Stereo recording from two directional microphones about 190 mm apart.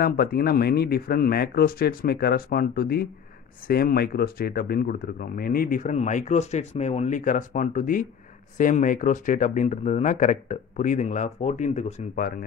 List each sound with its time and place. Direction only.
0.0 s speech: 55° left (ahead or behind)